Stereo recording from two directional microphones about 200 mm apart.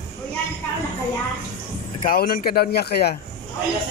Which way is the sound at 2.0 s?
45° left (ahead or behind).